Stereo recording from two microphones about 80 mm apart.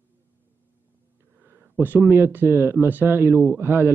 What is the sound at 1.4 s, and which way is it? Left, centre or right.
Speech, right.